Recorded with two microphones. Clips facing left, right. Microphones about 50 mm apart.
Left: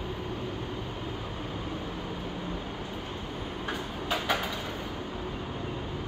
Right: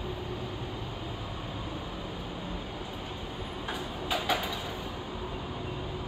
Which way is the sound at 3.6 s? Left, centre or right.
Centre.